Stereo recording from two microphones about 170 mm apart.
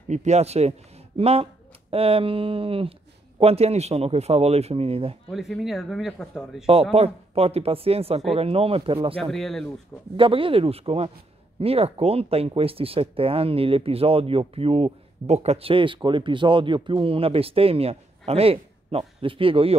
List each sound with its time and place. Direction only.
0.1 s speech: 40° right (ahead or behind)
5.3 s speech: centre (ahead or behind)
6.6 s speech: 35° right (ahead or behind)
9.2 s speech: centre (ahead or behind)
10.1 s speech: 30° right (ahead or behind)